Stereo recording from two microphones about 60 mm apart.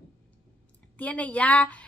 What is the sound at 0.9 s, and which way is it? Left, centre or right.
Speech, left.